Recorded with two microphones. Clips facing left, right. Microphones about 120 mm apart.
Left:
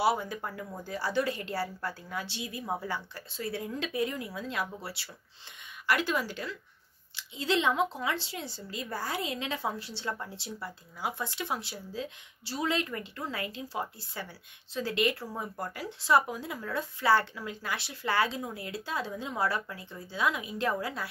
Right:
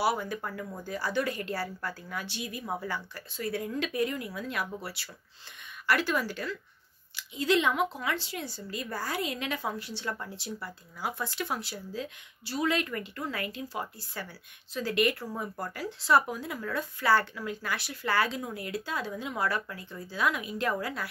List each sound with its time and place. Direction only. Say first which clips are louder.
0.0 s speech: left 1 dB; 25° left (ahead or behind)